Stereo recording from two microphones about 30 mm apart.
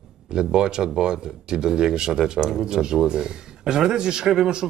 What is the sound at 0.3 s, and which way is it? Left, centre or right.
Speech, right.